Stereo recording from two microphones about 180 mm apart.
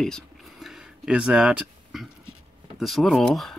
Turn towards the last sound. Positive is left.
turn(degrees=0)  # may be behind; listen again after turning